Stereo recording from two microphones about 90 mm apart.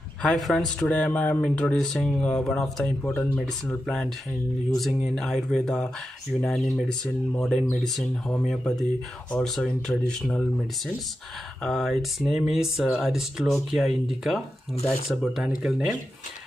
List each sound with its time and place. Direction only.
0.2 s speech: 5° left (ahead or behind)
0.7 s speech: 15° left (ahead or behind)
11.6 s speech: centre (ahead or behind)